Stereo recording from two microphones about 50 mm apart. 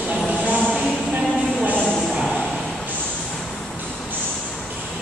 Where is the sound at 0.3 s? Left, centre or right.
Right.